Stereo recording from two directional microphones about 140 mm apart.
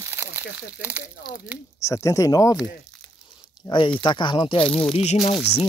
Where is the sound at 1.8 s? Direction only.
20° left (ahead or behind).